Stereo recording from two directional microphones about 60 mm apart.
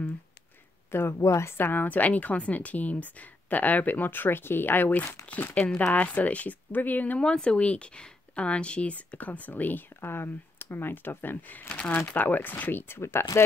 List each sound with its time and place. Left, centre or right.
0.9 s speech: left
1.6 s speech: left
11.7 s speech: centre
12.1 s speech: left